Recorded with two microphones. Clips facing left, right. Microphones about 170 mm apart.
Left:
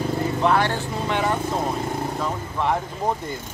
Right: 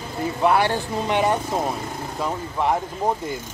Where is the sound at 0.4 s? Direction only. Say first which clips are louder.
Right 3 dB; 10° right (ahead or behind).